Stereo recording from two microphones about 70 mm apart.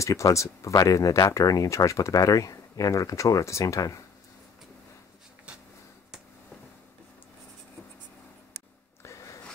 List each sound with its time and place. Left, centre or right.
0.0 s speech: left
9.0 s zipper: left